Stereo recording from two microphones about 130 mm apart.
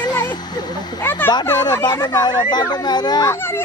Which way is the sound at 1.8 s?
30° left (ahead or behind).